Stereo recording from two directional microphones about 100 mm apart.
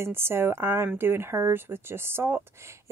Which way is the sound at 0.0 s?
25° right (ahead or behind).